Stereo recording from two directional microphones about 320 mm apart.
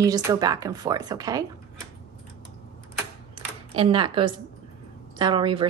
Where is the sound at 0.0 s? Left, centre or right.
Centre.